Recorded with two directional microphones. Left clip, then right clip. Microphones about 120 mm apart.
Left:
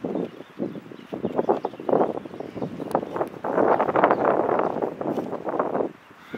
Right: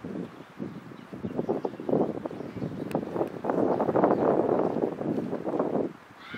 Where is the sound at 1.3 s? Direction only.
55° left (ahead or behind).